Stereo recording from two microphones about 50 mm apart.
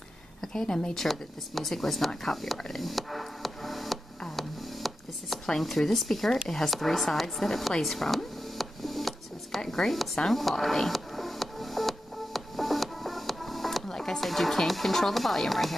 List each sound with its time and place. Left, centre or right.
0.5 s a woman's voice: centre
0.9 s speech: centre
4.4 s a sound: centre
5.5 s speech: centre
7.8 s music: centre